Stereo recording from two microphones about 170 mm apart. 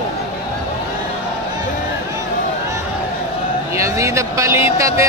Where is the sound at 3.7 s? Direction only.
15° right (ahead or behind).